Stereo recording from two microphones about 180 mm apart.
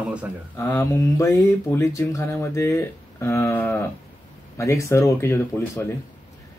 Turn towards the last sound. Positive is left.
turn(degrees=10)  # may be behind; listen again after turning